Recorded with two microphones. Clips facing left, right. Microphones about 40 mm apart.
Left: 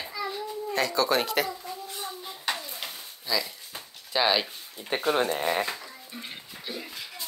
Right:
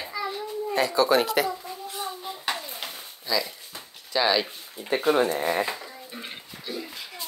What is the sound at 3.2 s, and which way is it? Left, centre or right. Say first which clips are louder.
Speech: right 2 dB; centre.